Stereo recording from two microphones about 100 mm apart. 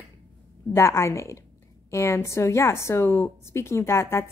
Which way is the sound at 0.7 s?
30° left (ahead or behind).